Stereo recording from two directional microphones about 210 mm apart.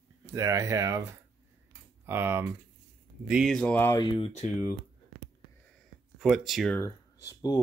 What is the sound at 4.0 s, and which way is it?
Speech, 25° left (ahead or behind).